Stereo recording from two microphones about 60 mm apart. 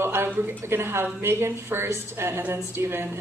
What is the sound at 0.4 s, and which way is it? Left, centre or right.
A woman's voice, right.